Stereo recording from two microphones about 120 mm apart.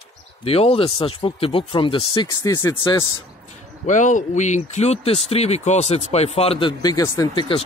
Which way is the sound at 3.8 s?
90° left.